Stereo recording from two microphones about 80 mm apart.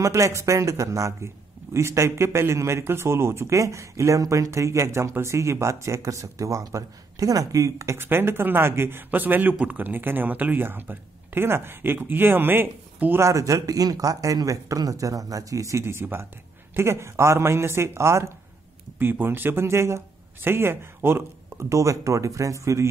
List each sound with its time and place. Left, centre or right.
0.0 s a man's voice: right
13.3 s a man's voice: right
18.9 s a man's voice: right